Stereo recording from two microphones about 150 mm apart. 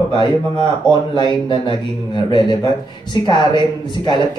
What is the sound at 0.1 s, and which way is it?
A man's voice, 30° left (ahead or behind).